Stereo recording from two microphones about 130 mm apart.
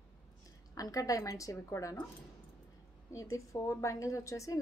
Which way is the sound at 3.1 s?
25° left (ahead or behind).